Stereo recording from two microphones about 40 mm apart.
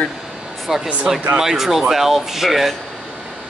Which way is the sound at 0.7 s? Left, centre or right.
Centre.